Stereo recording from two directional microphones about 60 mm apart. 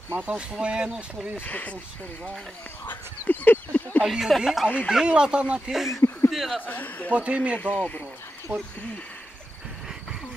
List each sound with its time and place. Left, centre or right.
0.2 s speech: right
0.5 s speech: centre
1.4 s a man's voice: left
2.9 s a sound: left
4.0 s speech: centre
5.0 s speech: centre
5.7 s speech: centre
5.9 s a sound: left
6.3 s speech: centre
6.6 s a man's voice: left
7.2 s speech: right
7.5 s a man's voice: left
8.5 s speech: right